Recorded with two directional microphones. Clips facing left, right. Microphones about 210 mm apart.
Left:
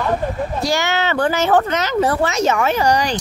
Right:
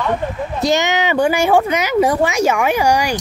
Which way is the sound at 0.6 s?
20° right (ahead or behind).